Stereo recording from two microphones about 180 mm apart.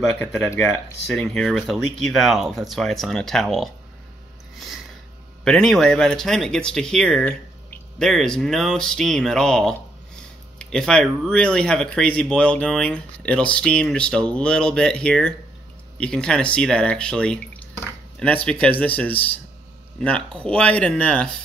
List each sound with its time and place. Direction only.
0.2 s speech: centre (ahead or behind)
0.5 s speech: 15° left (ahead or behind)
1.0 s speech: 5° left (ahead or behind)
5.4 s speech: 5° left (ahead or behind)